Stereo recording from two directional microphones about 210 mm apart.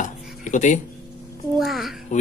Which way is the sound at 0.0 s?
35° left (ahead or behind).